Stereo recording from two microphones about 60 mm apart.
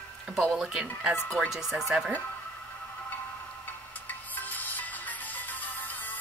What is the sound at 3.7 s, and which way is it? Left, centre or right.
Music, left.